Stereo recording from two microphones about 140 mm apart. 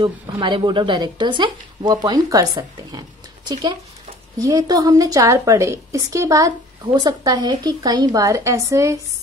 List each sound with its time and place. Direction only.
0.0 s a woman's voice: 35° right (ahead or behind)
4.4 s a woman's voice: 25° right (ahead or behind)